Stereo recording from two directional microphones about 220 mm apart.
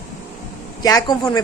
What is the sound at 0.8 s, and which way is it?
Speech, 20° left (ahead or behind).